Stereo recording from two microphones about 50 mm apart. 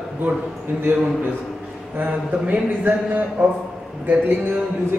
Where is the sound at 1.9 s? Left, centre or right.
Right.